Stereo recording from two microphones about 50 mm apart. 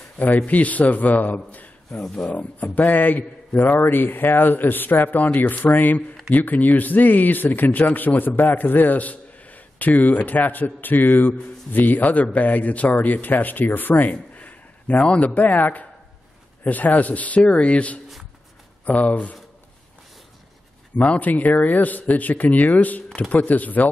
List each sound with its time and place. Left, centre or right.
0.5 s speech: left
1.9 s speech: centre
2.3 s a man's voice: left
21.0 s speech: left